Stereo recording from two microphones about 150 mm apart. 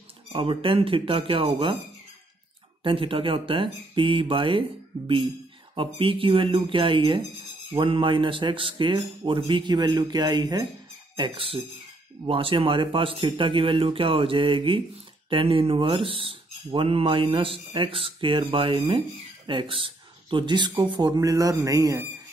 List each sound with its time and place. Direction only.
0.3 s speech: 35° right (ahead or behind)
2.8 s speech: 35° right (ahead or behind)